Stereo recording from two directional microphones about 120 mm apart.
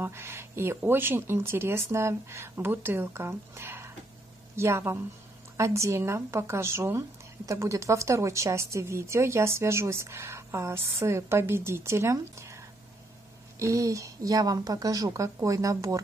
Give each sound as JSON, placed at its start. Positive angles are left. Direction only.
{"t": 0.0, "sound": "speech", "side_deg": -20}